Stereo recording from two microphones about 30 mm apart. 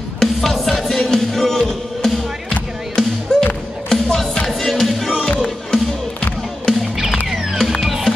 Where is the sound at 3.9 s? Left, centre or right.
Centre.